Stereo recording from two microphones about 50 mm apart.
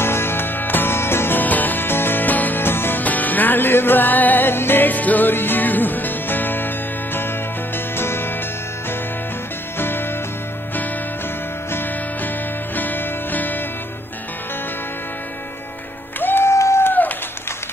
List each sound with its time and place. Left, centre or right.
0.0 s music: left
1.4 s music: left
2.6 s music: left
3.0 s music: left
9.8 s music: left
11.7 s music: left
16.2 s music: left
16.4 s a sound: left
16.8 s a sound: left